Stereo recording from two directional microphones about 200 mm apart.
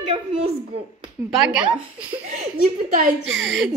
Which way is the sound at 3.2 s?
65° right (ahead or behind).